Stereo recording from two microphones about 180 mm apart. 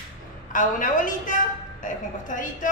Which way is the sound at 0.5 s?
45° left (ahead or behind).